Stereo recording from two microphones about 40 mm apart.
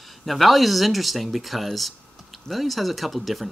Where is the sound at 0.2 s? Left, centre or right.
Centre.